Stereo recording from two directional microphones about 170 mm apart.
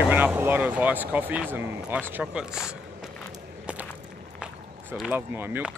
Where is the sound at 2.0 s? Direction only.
10° right (ahead or behind).